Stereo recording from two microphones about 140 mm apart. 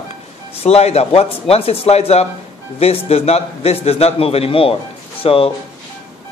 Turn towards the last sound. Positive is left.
turn(degrees=45)  # may be behind; listen again after turning